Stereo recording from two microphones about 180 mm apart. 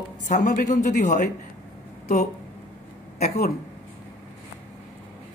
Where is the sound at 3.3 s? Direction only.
60° left (ahead or behind).